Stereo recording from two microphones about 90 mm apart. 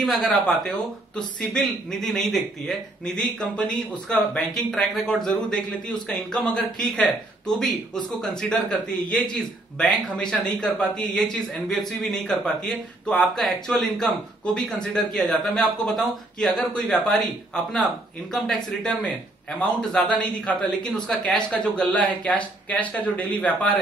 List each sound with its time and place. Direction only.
0.0 s speech: 5° left (ahead or behind)
18.3 s speech: 5° left (ahead or behind)